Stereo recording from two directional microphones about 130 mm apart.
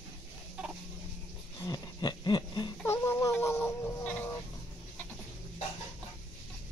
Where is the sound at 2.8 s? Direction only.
20° left (ahead or behind).